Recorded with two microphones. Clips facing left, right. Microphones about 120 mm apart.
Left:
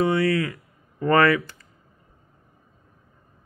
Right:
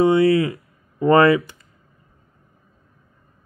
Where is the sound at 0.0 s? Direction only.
25° right (ahead or behind).